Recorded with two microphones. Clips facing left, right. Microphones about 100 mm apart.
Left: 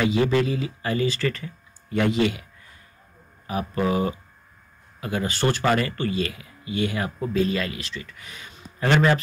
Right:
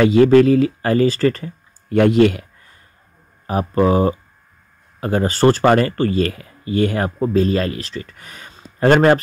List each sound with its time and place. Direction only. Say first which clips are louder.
0.0 s speech: right 10 dB; 50° right (ahead or behind)
1.9 s speech: right 9 dB; 55° right (ahead or behind)
3.4 s speech: right 8 dB; 40° right (ahead or behind)